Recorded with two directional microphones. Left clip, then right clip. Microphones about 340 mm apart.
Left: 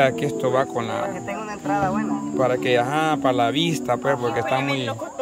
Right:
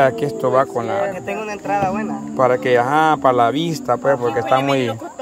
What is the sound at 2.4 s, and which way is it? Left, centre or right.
Speech, centre.